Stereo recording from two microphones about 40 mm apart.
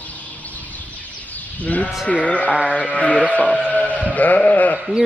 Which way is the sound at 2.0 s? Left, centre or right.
Left.